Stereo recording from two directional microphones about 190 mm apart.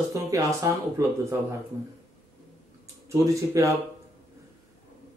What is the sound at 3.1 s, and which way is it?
Speech, 15° right (ahead or behind).